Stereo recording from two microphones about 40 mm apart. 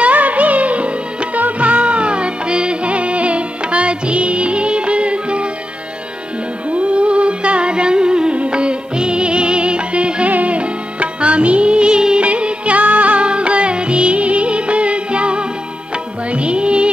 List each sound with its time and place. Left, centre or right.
0.0 s music of bollywood: right
6.7 s music: right